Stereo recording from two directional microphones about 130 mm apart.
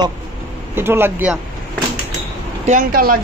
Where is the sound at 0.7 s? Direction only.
15° right (ahead or behind).